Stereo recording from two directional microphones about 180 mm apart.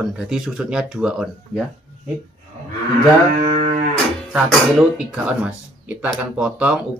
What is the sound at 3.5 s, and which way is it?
Cattle, 35° right (ahead or behind).